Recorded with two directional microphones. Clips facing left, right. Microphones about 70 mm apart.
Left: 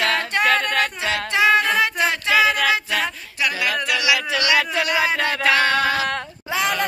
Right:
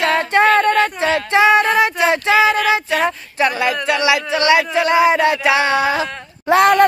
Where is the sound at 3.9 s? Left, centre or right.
Right.